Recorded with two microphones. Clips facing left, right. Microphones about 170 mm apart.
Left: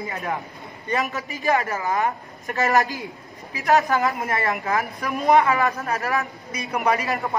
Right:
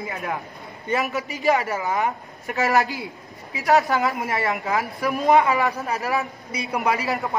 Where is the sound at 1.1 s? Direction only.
15° right (ahead or behind).